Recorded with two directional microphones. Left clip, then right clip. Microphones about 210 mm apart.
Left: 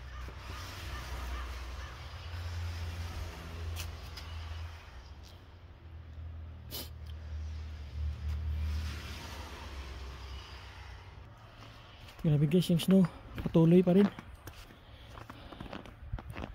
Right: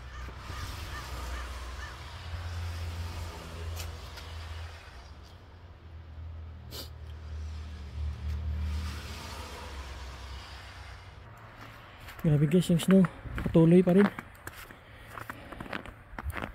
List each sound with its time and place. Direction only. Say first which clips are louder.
12.2 s speech: right 3 dB; centre (ahead or behind)
15.1 s walk: right 7 dB; 10° right (ahead or behind)